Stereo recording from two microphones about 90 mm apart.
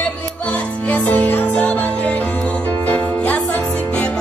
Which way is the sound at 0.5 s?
15° left (ahead or behind).